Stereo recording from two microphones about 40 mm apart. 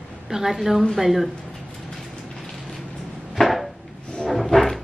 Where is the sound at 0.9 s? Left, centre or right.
Centre.